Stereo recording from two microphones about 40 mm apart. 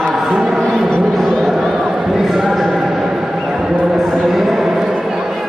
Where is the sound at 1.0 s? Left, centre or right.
Centre.